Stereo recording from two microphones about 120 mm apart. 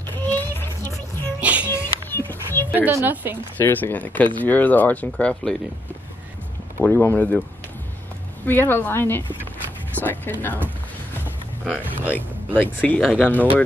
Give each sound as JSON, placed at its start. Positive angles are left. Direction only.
{"t": 0.2, "sound": "child singing", "side_deg": 15}
{"t": 1.4, "sound": "music", "side_deg": -10}
{"t": 2.0, "sound": "a sound", "side_deg": 15}
{"t": 2.8, "sound": "a woman's voice", "side_deg": -20}
{"t": 3.5, "sound": "speech", "side_deg": 15}
{"t": 6.8, "sound": "speech", "side_deg": 15}
{"t": 8.5, "sound": "speech", "side_deg": 20}
{"t": 12.1, "sound": "speech", "side_deg": 15}